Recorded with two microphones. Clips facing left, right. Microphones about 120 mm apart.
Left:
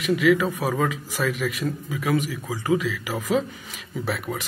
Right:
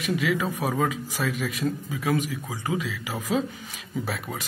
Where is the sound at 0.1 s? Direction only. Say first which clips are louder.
Left 6 dB; 30° right (ahead or behind).